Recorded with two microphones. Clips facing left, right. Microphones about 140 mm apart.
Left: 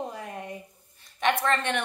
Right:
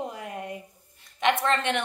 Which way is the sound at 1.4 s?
25° right (ahead or behind).